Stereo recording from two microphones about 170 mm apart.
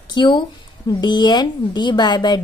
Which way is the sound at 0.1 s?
25° left (ahead or behind).